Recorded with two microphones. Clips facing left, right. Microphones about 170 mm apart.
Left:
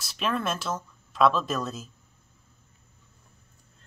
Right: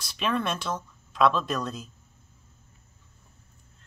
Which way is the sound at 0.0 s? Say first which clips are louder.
Right 1 dB; centre (ahead or behind).